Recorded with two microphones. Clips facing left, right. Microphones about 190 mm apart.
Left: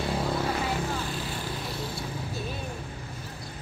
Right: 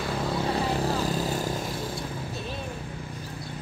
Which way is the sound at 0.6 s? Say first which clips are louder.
Right 4 dB; 35° right (ahead or behind).